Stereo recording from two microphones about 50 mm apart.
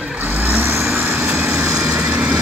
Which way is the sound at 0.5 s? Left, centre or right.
Right.